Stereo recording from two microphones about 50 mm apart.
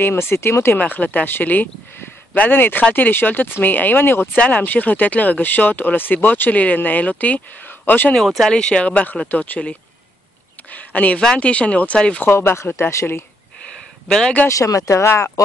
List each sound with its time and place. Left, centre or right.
0.0 s speech: left
0.7 s speech: left
4.4 s speech: left
8.1 s speech: centre
8.5 s speech: centre; by 9.6 s left
10.7 s a sound: left
11.3 s speech: left
12.4 s speech: left
14.0 s speech: centre
14.5 s speech: left
15.0 s speech: left